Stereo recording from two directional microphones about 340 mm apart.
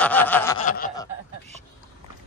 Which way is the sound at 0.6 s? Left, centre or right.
Left.